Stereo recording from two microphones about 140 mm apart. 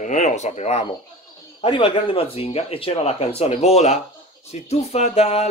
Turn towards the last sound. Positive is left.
turn(degrees=50)  # may be behind; listen again after turning